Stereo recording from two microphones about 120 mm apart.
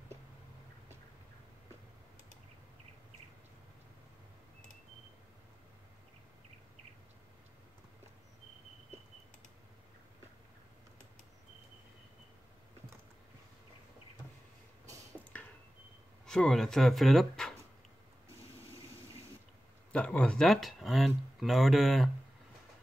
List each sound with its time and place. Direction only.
16.3 s speech: 5° left (ahead or behind)
19.9 s speech: 10° left (ahead or behind)